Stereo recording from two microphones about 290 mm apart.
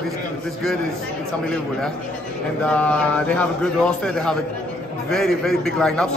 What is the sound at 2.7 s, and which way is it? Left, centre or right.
A man's voice, centre.